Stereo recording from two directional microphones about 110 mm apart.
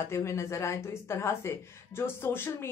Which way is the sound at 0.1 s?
25° left (ahead or behind).